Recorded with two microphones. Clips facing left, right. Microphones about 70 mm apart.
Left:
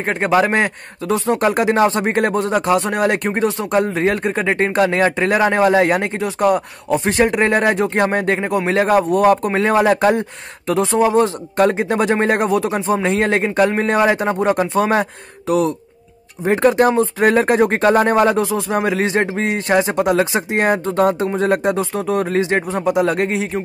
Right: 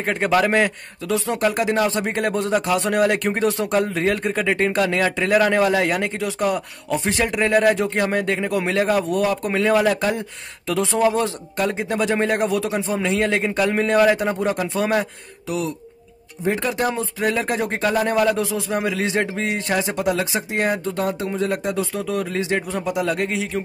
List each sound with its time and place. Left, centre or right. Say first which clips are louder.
0.0 s speech: left 3 dB; left
15.4 s speech: left 8 dB; left